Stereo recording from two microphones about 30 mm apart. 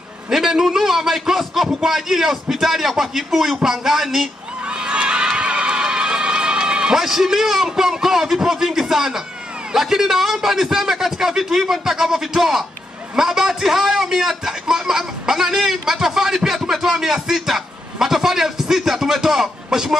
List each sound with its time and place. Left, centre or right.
0.3 s a man's voice: centre
4.6 s neigh: right
7.0 s a man's voice: centre